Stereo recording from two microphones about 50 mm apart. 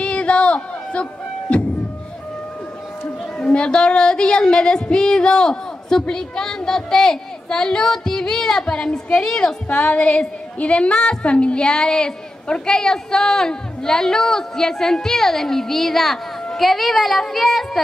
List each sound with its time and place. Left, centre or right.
0.0 s a sound: left
1.5 s beatboxing: left
3.3 s a woman's voice: left
9.7 s a woman's voice: left; by 17.6 s centre